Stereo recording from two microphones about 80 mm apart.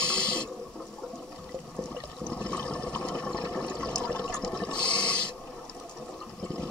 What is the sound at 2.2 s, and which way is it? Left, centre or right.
Water, centre.